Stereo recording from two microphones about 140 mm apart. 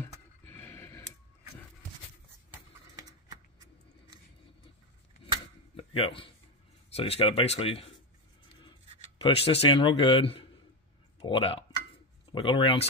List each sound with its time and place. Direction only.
0.5 s a sound: 15° left (ahead or behind)
5.8 s a man's voice: 40° left (ahead or behind)
9.2 s a man's voice: 45° left (ahead or behind)